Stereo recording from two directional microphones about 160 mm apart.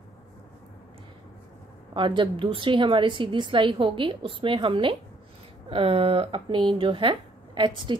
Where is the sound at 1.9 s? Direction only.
30° right (ahead or behind).